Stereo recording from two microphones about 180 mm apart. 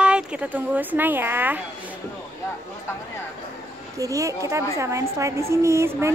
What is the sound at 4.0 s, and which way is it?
A woman's voice, 20° right (ahead or behind).